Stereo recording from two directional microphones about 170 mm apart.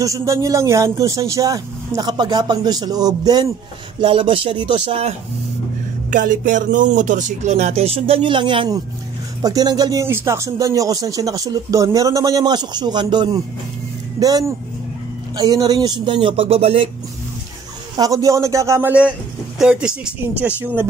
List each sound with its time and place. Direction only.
0.0 s speech: 20° right (ahead or behind); by 5.1 s 35° right (ahead or behind)
6.0 s speech: 50° right (ahead or behind); by 13.4 s 25° right (ahead or behind)
15.3 s speech: 20° right (ahead or behind)
17.9 s a man's voice: 20° right (ahead or behind)